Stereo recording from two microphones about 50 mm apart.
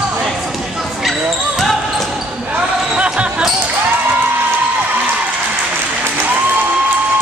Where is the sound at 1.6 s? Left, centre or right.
Centre.